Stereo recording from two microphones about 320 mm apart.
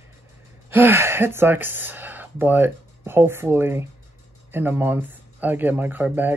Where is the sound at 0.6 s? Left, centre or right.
Centre.